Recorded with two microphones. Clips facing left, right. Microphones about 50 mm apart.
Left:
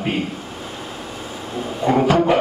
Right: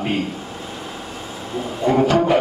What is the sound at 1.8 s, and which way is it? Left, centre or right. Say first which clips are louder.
Speech: even; centre.